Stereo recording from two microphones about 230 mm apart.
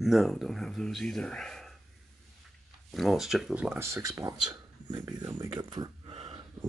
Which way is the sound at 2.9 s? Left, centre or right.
Centre.